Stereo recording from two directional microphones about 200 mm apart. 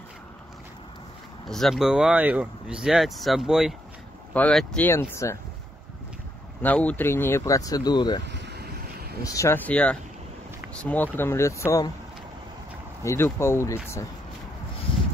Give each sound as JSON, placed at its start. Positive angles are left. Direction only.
{"t": 1.5, "sound": "speech", "side_deg": 0}
{"t": 6.6, "sound": "speech", "side_deg": 5}
{"t": 8.3, "sound": "vehicle", "side_deg": -55}
{"t": 9.2, "sound": "speech", "side_deg": 15}
{"t": 13.0, "sound": "speech", "side_deg": 15}